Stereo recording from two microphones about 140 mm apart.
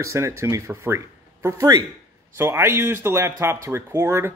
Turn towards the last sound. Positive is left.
turn(degrees=-20)  # may be behind; listen again after turning